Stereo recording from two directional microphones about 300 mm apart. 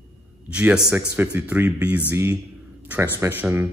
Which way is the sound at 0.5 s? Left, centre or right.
Centre.